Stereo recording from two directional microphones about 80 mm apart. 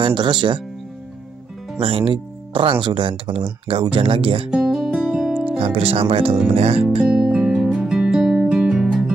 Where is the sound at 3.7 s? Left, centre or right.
Right.